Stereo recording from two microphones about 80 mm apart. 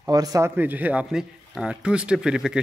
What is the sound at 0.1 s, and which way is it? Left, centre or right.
Speech, right.